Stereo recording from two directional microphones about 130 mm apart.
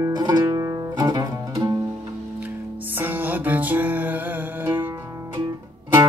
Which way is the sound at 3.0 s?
15° right (ahead or behind).